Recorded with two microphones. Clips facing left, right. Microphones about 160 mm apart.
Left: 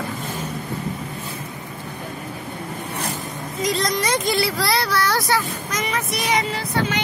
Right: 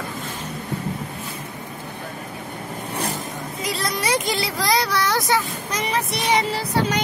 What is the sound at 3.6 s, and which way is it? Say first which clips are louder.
Speech: left 5 dB; 5° right (ahead or behind).